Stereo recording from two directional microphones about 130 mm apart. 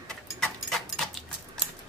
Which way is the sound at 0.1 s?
5° left (ahead or behind).